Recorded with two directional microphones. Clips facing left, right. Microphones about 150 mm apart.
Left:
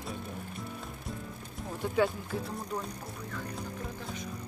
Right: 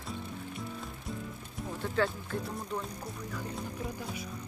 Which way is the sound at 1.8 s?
15° left (ahead or behind).